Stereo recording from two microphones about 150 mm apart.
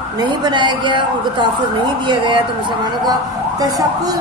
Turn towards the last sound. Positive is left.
turn(degrees=-25)  # may be behind; listen again after turning